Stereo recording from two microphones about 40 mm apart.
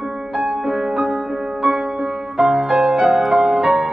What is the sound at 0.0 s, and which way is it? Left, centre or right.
Music, right.